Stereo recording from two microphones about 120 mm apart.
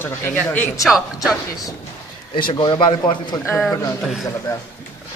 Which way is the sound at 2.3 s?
40° left (ahead or behind).